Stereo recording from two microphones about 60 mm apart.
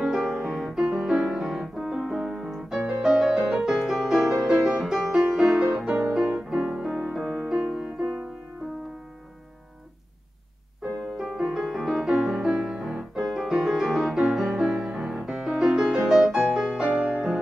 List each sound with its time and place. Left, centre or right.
0.1 s music: centre
6.3 s music: centre
10.8 s music: centre